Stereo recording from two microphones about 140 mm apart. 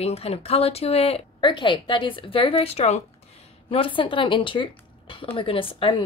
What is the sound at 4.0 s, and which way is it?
Speech, 35° left (ahead or behind).